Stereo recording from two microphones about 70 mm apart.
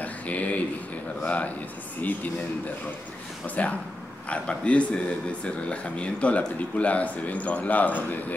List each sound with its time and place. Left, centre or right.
0.0 s a sound: left
1.2 s a man's voice: centre
3.4 s a man's voice: left